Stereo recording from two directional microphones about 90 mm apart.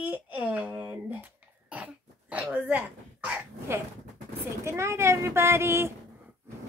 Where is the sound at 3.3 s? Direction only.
30° right (ahead or behind).